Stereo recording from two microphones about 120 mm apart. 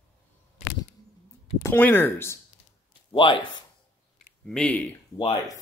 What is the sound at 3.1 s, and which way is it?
Speech, 40° left (ahead or behind).